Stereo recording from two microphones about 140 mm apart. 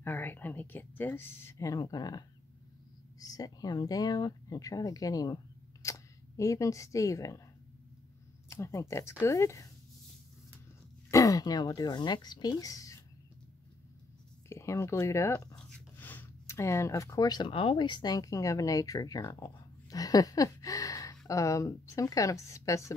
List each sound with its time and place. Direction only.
0.0 s speech: 15° left (ahead or behind)
8.5 s a woman's voice: 20° left (ahead or behind)
11.1 s speech: 25° left (ahead or behind)
14.5 s speech: 20° left (ahead or behind)
15.5 s a sound: 10° left (ahead or behind); by 17.5 s 30° left (ahead or behind)
17.5 s a woman's voice: 40° left (ahead or behind); by 22.9 s 20° left (ahead or behind)